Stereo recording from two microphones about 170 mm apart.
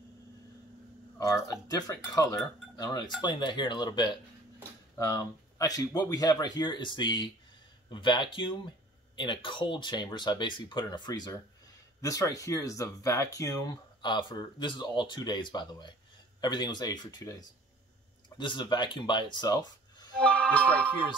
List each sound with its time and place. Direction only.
1.2 s speech: 20° left (ahead or behind)
20.2 s speech: 10° left (ahead or behind)